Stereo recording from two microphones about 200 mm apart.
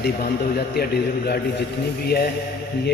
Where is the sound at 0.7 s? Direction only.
50° left (ahead or behind).